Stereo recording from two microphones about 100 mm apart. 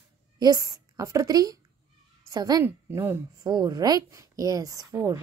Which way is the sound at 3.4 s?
40° right (ahead or behind).